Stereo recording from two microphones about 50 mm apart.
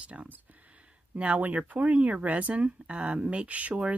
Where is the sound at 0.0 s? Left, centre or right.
Right.